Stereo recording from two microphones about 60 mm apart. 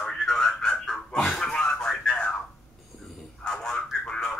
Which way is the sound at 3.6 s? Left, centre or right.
Centre.